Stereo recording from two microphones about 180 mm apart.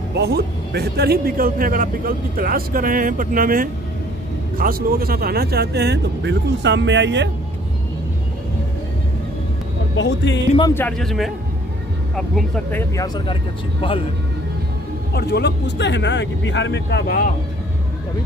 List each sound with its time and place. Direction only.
0.7 s a man's voice: 60° right (ahead or behind); by 7.2 s 80° right
9.9 s speech: 80° left
10.7 s speech: 10° left (ahead or behind)
12.9 s speech: 20° left (ahead or behind)
15.1 s speech: 65° left (ahead or behind)